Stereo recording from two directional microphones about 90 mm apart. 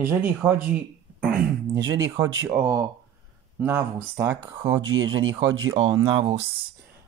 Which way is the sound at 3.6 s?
25° right (ahead or behind).